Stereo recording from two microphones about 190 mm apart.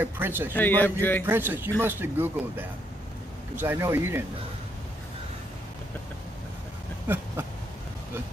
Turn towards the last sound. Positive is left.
turn(degrees=-10)  # may be behind; listen again after turning